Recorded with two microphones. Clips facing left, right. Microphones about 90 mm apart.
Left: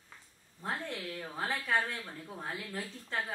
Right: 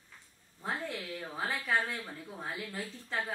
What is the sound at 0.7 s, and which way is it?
Speech, centre (ahead or behind).